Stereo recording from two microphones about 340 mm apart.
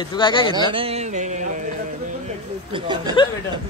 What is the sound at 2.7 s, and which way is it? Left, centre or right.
Speech, centre.